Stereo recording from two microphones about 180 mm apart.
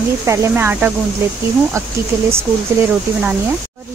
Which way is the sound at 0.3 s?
15° right (ahead or behind).